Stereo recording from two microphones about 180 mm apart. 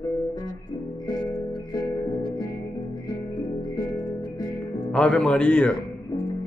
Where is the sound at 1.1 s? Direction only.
25° left (ahead or behind).